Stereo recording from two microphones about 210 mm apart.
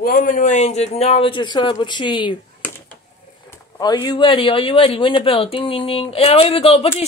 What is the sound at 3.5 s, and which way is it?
Speech, 20° left (ahead or behind).